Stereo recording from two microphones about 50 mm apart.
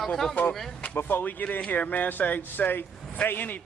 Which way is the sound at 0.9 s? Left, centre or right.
Left.